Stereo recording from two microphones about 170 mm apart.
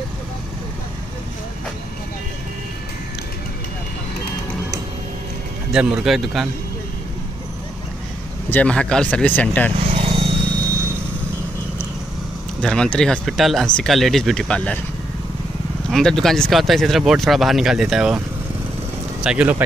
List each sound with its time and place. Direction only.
5.7 s speech: 5° right (ahead or behind)
8.5 s speech: 10° left (ahead or behind)
9.9 s vehicle: 35° right (ahead or behind)
12.6 s speech: 5° left (ahead or behind)
15.9 s speech: 5° left (ahead or behind)
19.2 s speech: 10° right (ahead or behind)